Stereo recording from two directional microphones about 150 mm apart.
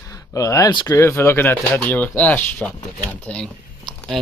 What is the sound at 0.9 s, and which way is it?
Speech, 15° left (ahead or behind).